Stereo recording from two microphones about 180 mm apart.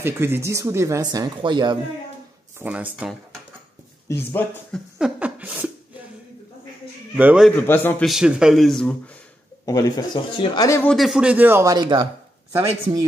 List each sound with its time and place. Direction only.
0.0 s speech: 15° right (ahead or behind)
2.6 s speech: 10° right (ahead or behind)
4.1 s a man's voice: 15° left (ahead or behind)
4.7 s a sound: 5° right (ahead or behind)
7.2 s speech: 5° right (ahead or behind)
7.5 s a man's voice: 10° left (ahead or behind)
8.1 s speech: 5° right (ahead or behind)
9.7 s speech: 20° left (ahead or behind)
10.9 s speech: centre (ahead or behind); by 12.1 s 25° right (ahead or behind)